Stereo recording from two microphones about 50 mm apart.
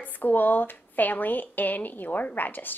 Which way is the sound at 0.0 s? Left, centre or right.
Left.